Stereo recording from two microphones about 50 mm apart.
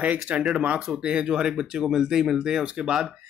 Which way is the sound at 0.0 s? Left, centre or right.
Right.